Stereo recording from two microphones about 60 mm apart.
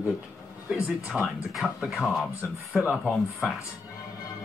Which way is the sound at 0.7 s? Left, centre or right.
Centre.